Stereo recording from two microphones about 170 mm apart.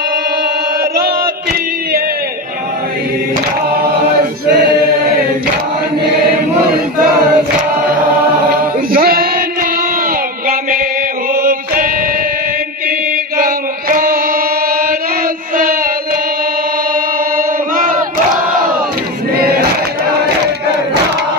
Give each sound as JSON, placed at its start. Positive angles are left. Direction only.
{"t": 0.9, "sound": "chant", "side_deg": -60}
{"t": 8.9, "sound": "a sound", "side_deg": -60}
{"t": 11.3, "sound": "mantra", "side_deg": -55}
{"t": 13.4, "sound": "chant", "side_deg": -55}
{"t": 15.5, "sound": "music", "side_deg": -55}
{"t": 17.7, "sound": "crowd", "side_deg": -50}
{"t": 19.3, "sound": "a sound", "side_deg": -65}